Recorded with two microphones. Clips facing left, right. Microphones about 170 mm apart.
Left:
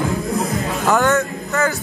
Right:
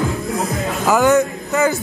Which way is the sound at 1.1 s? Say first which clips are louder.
Right 4 dB; 15° right (ahead or behind).